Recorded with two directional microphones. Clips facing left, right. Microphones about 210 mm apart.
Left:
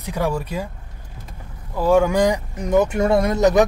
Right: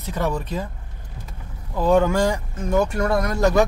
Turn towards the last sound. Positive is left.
turn(degrees=20)  # may be behind; listen again after turning